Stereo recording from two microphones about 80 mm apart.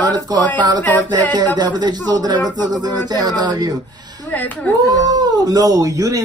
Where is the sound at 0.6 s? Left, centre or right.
Right.